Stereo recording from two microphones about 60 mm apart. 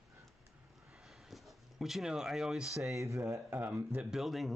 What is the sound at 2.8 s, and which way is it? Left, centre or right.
Speech, right.